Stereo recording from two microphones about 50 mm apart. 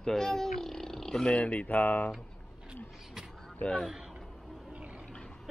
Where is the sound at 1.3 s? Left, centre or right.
Left.